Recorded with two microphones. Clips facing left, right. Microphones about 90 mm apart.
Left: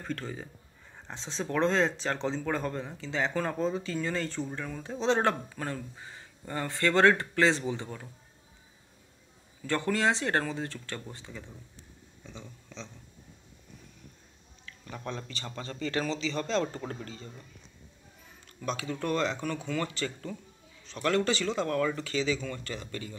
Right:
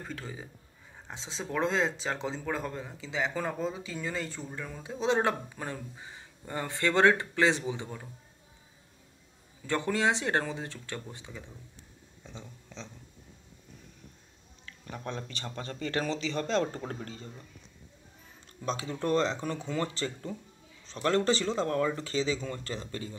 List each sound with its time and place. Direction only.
0.1 s speech: 5° right (ahead or behind)
9.7 s speech: 20° right (ahead or behind)
12.2 s speech: 35° right (ahead or behind)
14.7 s a man's voice: 35° right (ahead or behind)
18.6 s speech: 30° right (ahead or behind)